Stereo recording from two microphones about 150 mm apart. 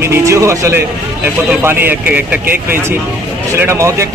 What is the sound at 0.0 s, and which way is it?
A man's voice, 20° right (ahead or behind).